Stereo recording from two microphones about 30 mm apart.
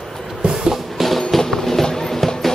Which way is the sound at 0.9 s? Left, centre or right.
Centre.